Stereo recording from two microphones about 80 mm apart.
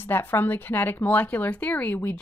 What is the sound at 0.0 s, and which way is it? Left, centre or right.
Speech, left.